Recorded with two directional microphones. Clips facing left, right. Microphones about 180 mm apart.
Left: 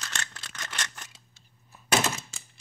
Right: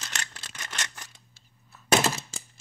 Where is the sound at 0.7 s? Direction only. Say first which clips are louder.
Right 1 dB; 10° right (ahead or behind).